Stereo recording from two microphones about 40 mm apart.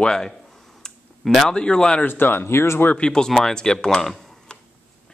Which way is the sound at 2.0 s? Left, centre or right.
Left.